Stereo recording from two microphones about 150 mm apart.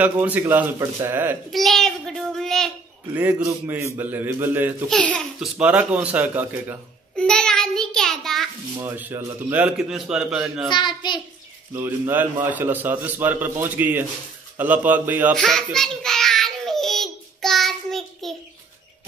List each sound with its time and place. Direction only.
0.0 s a man's voice: 10° right (ahead or behind)
1.5 s a man's voice: centre (ahead or behind)
3.2 s a man's voice: 10° right (ahead or behind)
4.8 s a man's voice: 5° left (ahead or behind)
5.6 s a man's voice: 10° right (ahead or behind)
7.2 s a man's voice: 5° left (ahead or behind)
8.8 s a man's voice: 15° right (ahead or behind)
10.7 s a child's voice: 30° left (ahead or behind)
11.7 s a man's voice: 15° right (ahead or behind)
15.3 s babbling: 5° left (ahead or behind)